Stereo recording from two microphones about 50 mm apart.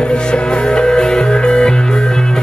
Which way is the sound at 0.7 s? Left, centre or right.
Centre.